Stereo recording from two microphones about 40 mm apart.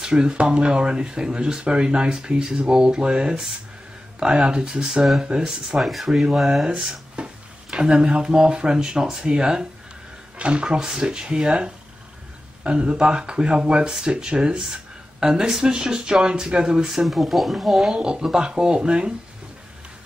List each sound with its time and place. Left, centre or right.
0.0 s speech: right
5.8 s speech: centre
7.2 s a sound: right
7.8 s speech: right
17.0 s speech: centre
17.9 s speech: right